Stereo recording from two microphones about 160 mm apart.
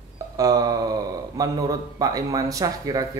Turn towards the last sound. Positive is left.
turn(degrees=-20)  # may be behind; listen again after turning